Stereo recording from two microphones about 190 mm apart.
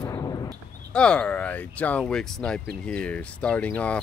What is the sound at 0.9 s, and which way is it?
Speech, 5° left (ahead or behind).